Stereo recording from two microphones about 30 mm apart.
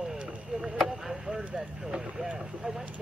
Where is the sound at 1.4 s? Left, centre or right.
Right.